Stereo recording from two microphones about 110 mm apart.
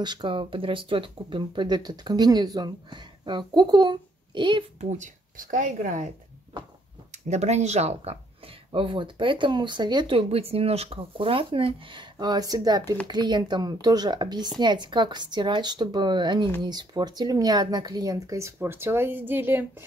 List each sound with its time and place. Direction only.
0.0 s speech: 45° right (ahead or behind)
4.7 s speech: 90° right
7.1 s speech: 90° right; by 19.6 s 20° right (ahead or behind)